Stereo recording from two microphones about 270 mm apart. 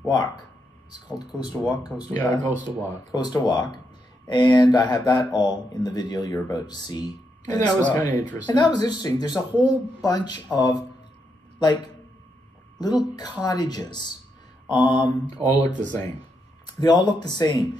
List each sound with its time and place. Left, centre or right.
0.0 s speech: centre
12.8 s speech: centre